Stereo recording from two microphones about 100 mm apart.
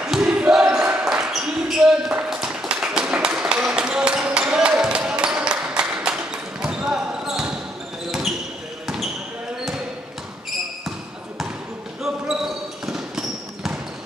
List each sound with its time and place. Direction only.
0.0 s basketball bounce: 5° right (ahead or behind)
8.8 s basketball bounce: 5° right (ahead or behind)
12.8 s basketball bounce: 5° right (ahead or behind)